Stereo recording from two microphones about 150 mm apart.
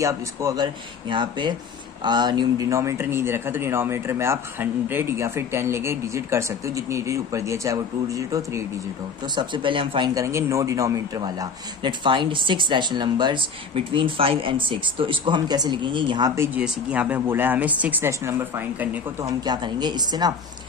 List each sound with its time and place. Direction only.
0.0 s speech: 20° right (ahead or behind)
1.1 s speech: 30° right (ahead or behind)
16.3 s speech: 10° right (ahead or behind)
19.4 s speech: 30° right (ahead or behind)